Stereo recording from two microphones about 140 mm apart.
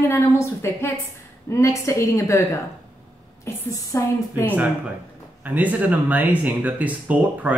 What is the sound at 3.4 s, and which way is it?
A woman's voice, 25° left (ahead or behind).